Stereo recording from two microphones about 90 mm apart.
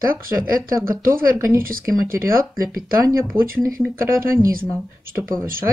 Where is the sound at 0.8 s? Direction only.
30° right (ahead or behind).